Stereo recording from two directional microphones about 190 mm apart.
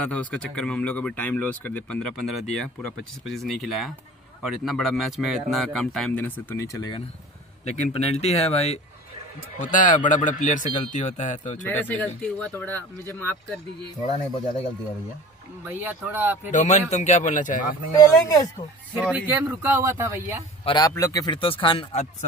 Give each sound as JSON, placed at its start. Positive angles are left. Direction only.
{"t": 0.0, "sound": "speech", "side_deg": 5}
{"t": 7.6, "sound": "a man's voice", "side_deg": 35}
{"t": 11.6, "sound": "speech", "side_deg": 10}
{"t": 15.6, "sound": "a man's voice", "side_deg": -10}
{"t": 16.4, "sound": "a man's voice", "side_deg": 35}
{"t": 17.9, "sound": "speech", "side_deg": 20}
{"t": 18.9, "sound": "a man's voice", "side_deg": -10}
{"t": 20.6, "sound": "speech", "side_deg": 25}